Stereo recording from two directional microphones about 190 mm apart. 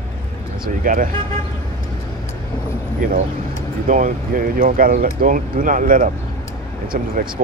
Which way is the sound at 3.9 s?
45° right (ahead or behind).